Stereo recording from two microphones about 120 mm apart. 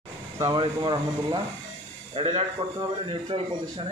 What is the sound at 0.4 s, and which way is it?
Speech, 40° right (ahead or behind).